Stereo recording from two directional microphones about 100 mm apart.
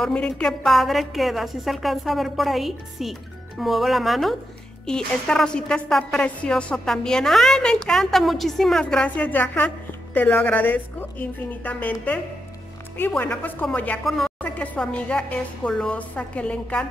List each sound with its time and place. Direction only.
0.0 s a woman's voice: 10° left (ahead or behind)
13.2 s a woman's voice: 20° left (ahead or behind)
14.0 s a woman's voice: 5° left (ahead or behind)
14.4 s a woman's voice: 15° left (ahead or behind)